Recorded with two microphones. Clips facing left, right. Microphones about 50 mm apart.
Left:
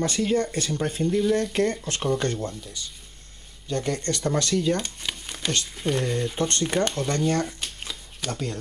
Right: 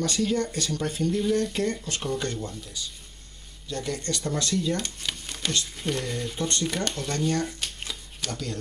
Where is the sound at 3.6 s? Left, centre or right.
Left.